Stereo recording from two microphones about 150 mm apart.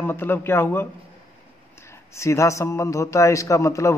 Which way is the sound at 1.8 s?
20° left (ahead or behind).